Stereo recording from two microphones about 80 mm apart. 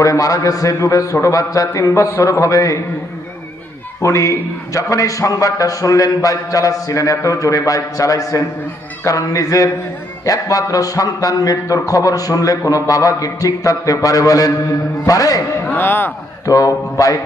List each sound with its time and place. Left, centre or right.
0.0 s a man's voice: left
4.0 s a man's voice: left
15.6 s speech: left
16.4 s a man's voice: left